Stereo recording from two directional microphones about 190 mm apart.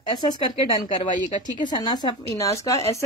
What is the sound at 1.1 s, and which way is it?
Speech, 40° left (ahead or behind).